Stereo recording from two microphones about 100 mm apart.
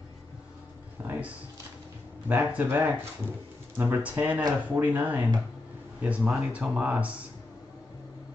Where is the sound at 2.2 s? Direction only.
15° right (ahead or behind).